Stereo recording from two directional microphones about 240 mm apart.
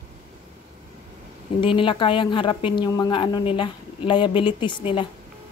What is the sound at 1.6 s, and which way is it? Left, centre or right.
A woman's voice, left.